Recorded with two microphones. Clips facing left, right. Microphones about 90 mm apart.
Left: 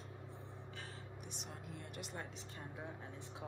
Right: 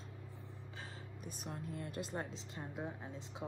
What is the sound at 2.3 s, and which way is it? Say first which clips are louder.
Speech: right 4 dB; 20° right (ahead or behind).